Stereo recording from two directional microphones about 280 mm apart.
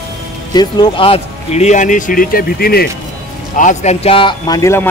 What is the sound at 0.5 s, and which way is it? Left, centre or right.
A man's voice, centre.